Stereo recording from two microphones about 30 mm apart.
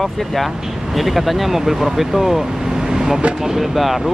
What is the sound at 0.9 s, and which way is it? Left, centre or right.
Speech, centre.